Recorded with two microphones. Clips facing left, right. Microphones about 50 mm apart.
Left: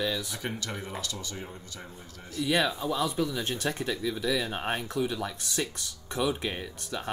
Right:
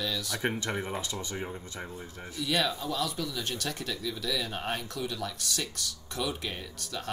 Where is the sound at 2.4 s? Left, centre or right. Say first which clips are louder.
Left 3 dB; centre.